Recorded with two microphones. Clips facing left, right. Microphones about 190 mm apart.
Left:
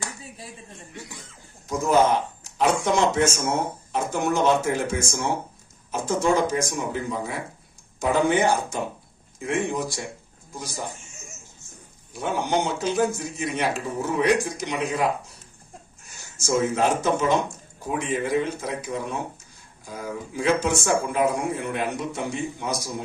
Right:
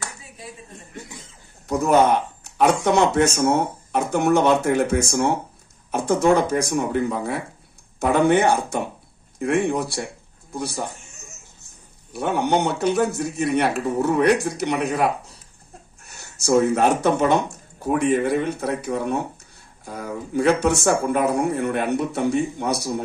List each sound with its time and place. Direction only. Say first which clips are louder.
1.7 s a man's voice: right 3 dB; 65° right (ahead or behind)
16.1 s speech: right 6 dB; 65° right (ahead or behind)